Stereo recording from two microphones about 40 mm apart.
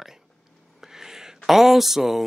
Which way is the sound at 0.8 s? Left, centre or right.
Centre.